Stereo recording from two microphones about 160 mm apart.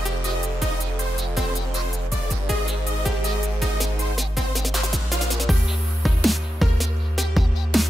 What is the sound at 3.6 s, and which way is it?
Music, centre (ahead or behind).